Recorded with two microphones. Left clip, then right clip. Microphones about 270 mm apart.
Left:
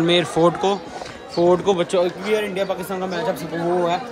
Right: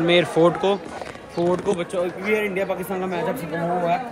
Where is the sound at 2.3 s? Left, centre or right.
Centre.